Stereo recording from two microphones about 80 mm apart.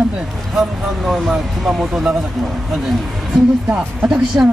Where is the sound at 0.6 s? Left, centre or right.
Centre.